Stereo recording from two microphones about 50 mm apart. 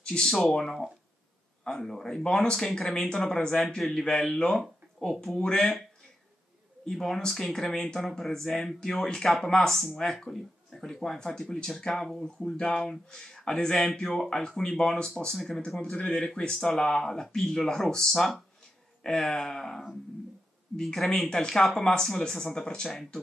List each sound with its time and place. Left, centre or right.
0.0 s speech: centre
0.3 s speech: centre
9.8 s speech: centre
12.3 s speech: centre